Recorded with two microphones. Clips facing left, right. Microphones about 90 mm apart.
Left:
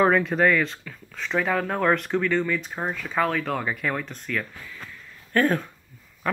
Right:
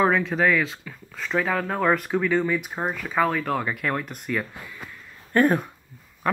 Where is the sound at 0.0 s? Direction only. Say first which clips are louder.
Left 1 dB; centre (ahead or behind); by 5.7 s 15° right (ahead or behind).